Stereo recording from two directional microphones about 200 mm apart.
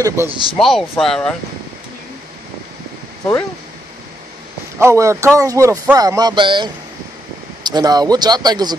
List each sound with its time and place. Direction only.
0.0 s a man's voice: 15° right (ahead or behind)
0.6 s speech: centre (ahead or behind)
4.7 s a man's voice: 15° right (ahead or behind)